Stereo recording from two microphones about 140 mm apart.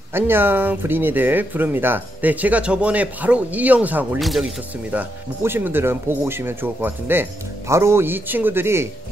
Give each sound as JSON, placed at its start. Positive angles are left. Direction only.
{"t": 0.1, "sound": "speech", "side_deg": -15}
{"t": 4.2, "sound": "speech", "side_deg": 0}
{"t": 4.9, "sound": "speech", "side_deg": -15}